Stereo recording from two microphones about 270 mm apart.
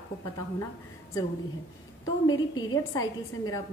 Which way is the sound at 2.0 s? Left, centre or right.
Centre.